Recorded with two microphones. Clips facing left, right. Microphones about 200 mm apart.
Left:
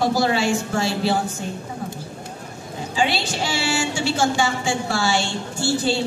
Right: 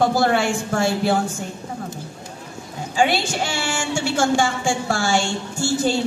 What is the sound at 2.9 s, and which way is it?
A woman's voice, 50° right (ahead or behind).